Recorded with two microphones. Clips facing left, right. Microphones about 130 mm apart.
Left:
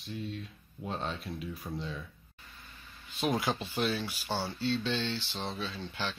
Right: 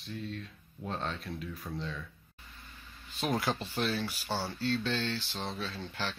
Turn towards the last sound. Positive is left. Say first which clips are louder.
# left 1 dB
turn(degrees=0)  # may be behind; listen again after turning